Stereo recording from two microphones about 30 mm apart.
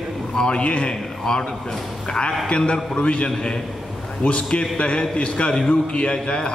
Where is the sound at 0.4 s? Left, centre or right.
Left.